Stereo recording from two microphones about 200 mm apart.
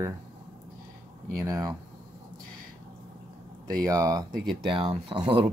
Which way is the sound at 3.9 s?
15° right (ahead or behind).